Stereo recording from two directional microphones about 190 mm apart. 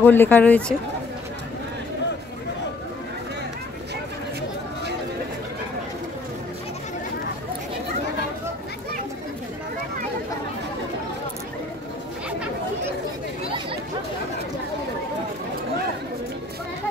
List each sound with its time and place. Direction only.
0.0 s speech: 10° left (ahead or behind)